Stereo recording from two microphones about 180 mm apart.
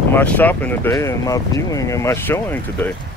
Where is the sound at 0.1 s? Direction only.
10° left (ahead or behind).